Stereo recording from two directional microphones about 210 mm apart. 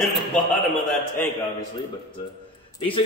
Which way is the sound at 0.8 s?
10° left (ahead or behind).